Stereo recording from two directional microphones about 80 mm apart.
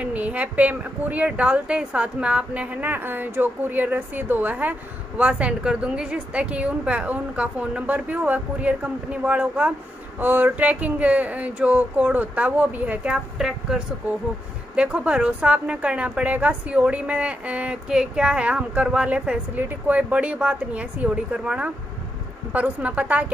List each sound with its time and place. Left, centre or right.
0.0 s a woman's voice: centre